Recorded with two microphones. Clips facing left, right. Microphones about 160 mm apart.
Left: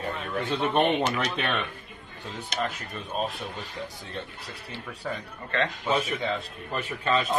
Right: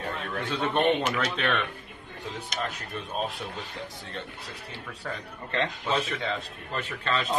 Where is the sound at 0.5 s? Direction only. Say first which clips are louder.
Even; 5° left (ahead or behind).